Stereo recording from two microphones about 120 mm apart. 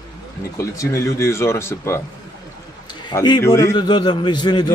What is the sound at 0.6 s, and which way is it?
Speech, 25° left (ahead or behind).